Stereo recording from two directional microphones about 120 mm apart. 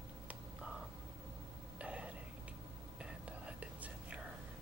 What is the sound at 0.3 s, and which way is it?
Whispering, 10° right (ahead or behind).